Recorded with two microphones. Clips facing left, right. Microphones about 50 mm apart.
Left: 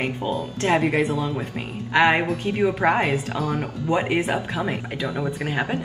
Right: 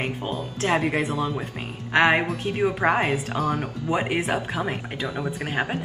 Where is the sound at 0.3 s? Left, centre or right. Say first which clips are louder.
Left 3 dB; centre.